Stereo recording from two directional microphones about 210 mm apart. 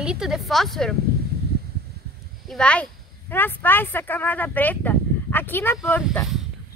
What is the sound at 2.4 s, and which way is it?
Speech, 5° left (ahead or behind).